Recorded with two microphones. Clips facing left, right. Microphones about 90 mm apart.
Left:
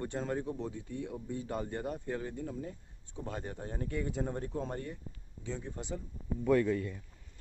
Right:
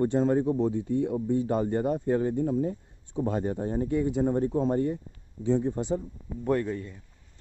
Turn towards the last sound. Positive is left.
turn(degrees=-25)  # may be behind; listen again after turning